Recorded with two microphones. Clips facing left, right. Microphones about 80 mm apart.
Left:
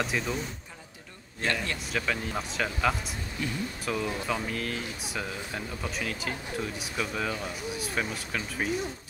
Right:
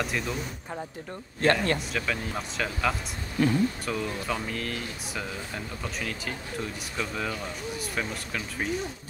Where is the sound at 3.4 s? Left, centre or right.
Right.